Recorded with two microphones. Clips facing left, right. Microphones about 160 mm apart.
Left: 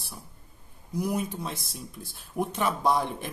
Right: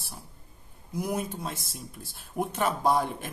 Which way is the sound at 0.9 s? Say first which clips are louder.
Left 2 dB; 55° right (ahead or behind).